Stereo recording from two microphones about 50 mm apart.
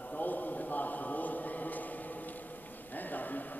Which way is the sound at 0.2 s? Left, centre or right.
Left.